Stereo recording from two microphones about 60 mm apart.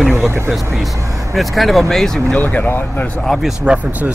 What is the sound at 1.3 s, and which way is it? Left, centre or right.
Speech, centre.